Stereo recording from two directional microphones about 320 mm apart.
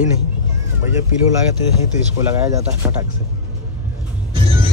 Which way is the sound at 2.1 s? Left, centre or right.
Centre.